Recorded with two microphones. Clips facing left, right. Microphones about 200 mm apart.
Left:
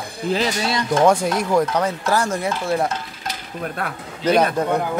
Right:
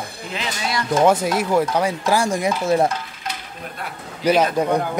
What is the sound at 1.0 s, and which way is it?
Speech, 5° right (ahead or behind).